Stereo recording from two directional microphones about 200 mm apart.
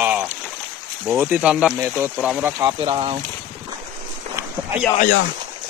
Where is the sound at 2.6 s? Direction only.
25° right (ahead or behind).